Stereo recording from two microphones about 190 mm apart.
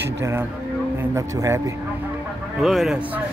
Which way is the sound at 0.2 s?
15° right (ahead or behind).